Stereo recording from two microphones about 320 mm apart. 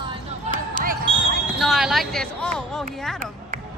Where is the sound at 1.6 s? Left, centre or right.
Centre.